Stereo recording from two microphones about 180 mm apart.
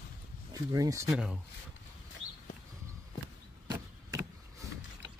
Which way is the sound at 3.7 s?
20° right (ahead or behind).